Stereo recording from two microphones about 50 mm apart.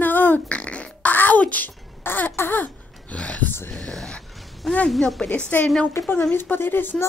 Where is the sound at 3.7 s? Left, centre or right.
Centre.